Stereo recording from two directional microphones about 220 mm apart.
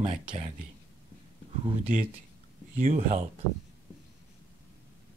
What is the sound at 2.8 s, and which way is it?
Speech, 35° right (ahead or behind).